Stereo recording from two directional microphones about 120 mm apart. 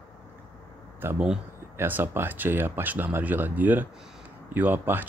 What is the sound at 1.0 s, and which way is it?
Speech, 20° right (ahead or behind).